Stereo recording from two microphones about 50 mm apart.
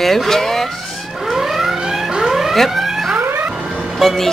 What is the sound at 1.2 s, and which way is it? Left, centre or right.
Alarm, centre.